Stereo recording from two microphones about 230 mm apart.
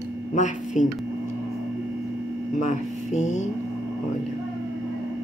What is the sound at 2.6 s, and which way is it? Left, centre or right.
Speech, left.